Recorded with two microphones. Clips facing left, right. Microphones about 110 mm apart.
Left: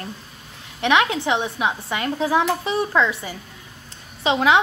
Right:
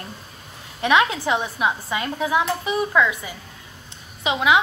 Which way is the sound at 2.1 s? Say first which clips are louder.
Left 2 dB; 35° left (ahead or behind).